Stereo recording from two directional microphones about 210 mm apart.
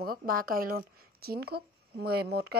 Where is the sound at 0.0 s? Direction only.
45° right (ahead or behind).